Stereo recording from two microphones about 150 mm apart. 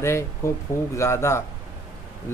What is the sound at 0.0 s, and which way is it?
Speech, 20° left (ahead or behind).